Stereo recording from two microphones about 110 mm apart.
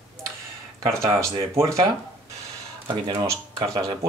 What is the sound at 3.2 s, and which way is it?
Speech, 30° right (ahead or behind).